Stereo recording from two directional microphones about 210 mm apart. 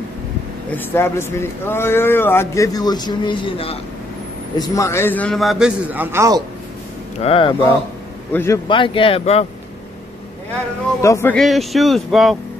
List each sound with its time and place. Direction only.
0.7 s speech: 10° left (ahead or behind); by 3.7 s 25° left (ahead or behind)
4.6 s a man's voice: 15° left (ahead or behind); by 6.4 s 15° right (ahead or behind)
7.2 s speech: 25° left (ahead or behind)
8.3 s speech: 10° left (ahead or behind)
8.6 s speech: 25° left (ahead or behind)
11.0 s speech: 15° left (ahead or behind)
11.3 s a man's voice: centre (ahead or behind)